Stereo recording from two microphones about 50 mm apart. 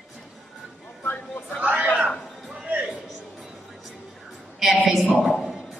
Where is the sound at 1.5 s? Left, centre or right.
Right.